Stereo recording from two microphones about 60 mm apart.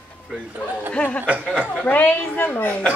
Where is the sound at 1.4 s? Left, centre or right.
Centre.